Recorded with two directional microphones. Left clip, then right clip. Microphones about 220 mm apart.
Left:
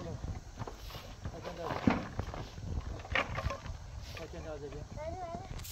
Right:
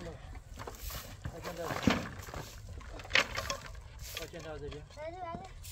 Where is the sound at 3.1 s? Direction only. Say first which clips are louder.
Right 4 dB; 50° right (ahead or behind).